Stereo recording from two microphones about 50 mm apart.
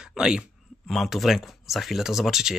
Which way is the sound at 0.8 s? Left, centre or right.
Centre.